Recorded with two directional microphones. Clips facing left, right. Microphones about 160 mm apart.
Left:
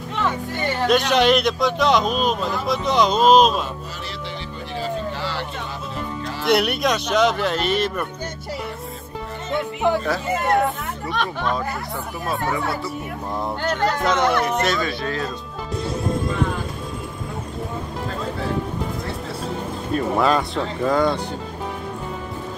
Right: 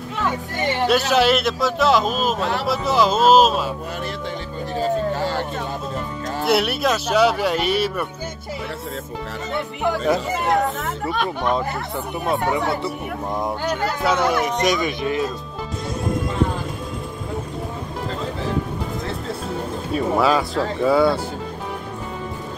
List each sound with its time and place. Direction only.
0.8 s a man's voice: 5° right (ahead or behind)
2.4 s speech: 75° right (ahead or behind)
2.7 s a man's voice: 5° right (ahead or behind)
4.7 s music: 45° right (ahead or behind)
6.4 s speech: 5° right (ahead or behind)
10.4 s a man's voice: centre (ahead or behind)
12.3 s speech: 20° right (ahead or behind)
13.4 s speech: 10° right (ahead or behind)
19.9 s a man's voice: 5° right (ahead or behind)